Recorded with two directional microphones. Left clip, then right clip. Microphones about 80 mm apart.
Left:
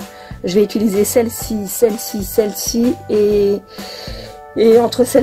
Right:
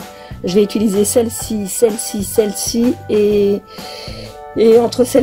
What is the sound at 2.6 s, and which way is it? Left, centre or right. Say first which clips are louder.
Music: even; right.